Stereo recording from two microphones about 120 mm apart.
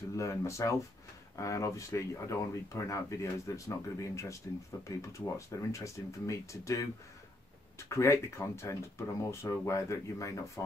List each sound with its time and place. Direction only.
0.1 s speech: 25° left (ahead or behind)
5.5 s speech: 25° left (ahead or behind)
7.9 s speech: 25° left (ahead or behind)